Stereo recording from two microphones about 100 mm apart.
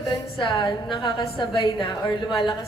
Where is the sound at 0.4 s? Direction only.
55° left (ahead or behind).